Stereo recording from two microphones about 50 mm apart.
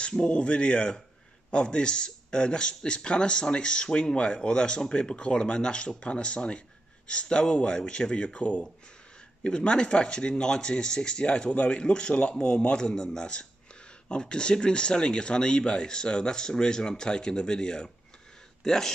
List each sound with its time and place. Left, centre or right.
0.1 s a man's voice: left